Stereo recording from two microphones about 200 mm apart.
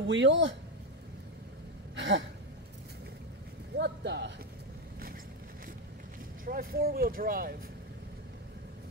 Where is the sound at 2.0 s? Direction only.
65° right (ahead or behind).